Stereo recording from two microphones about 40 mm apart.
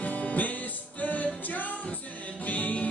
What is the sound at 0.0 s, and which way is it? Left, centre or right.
Music, left.